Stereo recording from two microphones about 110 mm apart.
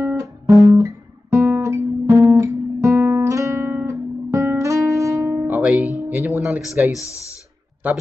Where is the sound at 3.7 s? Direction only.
25° right (ahead or behind).